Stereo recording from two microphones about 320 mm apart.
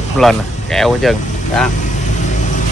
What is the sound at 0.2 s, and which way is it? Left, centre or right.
Speech, centre.